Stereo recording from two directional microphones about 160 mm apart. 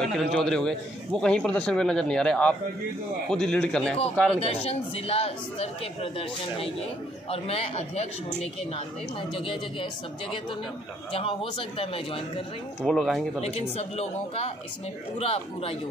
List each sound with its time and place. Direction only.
0.0 s a man's voice: centre (ahead or behind)
4.4 s speech: 35° left (ahead or behind)
7.2 s speech: 35° left (ahead or behind)
12.8 s a man's voice: centre (ahead or behind)
13.4 s speech: 40° left (ahead or behind)